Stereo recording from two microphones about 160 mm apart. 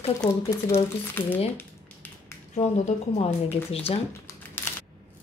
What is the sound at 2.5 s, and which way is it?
A woman's voice, 45° left (ahead or behind).